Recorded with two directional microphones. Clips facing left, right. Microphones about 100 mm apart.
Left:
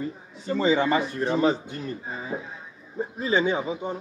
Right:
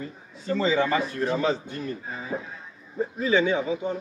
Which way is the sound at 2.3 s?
10° left (ahead or behind).